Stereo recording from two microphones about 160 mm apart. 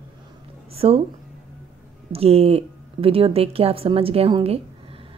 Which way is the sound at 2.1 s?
40° right (ahead or behind).